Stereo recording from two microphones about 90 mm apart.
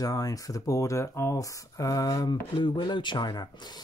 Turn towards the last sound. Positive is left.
turn(degrees=50)  # may be behind; listen again after turning